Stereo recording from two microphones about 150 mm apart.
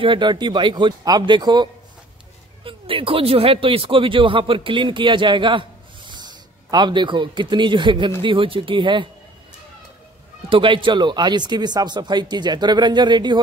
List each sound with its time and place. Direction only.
0.0 s speech: 30° right (ahead or behind)
10.5 s speech: 35° right (ahead or behind)